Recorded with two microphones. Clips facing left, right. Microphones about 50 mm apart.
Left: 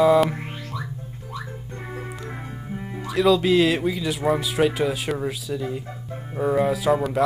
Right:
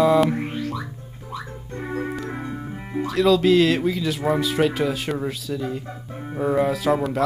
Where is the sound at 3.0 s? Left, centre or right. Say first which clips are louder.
Right 1 dB; centre.